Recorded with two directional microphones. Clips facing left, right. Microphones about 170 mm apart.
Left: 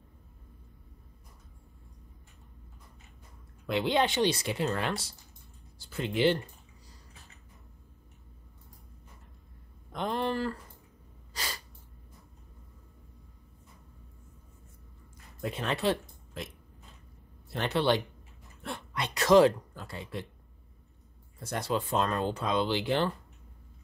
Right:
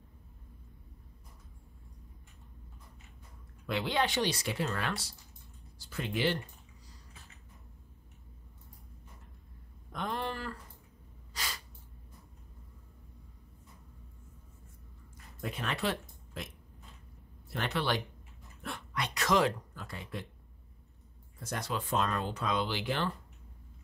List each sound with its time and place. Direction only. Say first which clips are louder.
3.6 s speech: left 4 dB; 25° left (ahead or behind)
9.9 s speech: left 6 dB; 25° left (ahead or behind)
11.3 s sneeze: left 2 dB; 35° left (ahead or behind)
15.7 s speech: left 6 dB; 30° left (ahead or behind)
17.5 s speech: left 6 dB; 25° left (ahead or behind)
21.4 s speech: left 5 dB; 30° left (ahead or behind)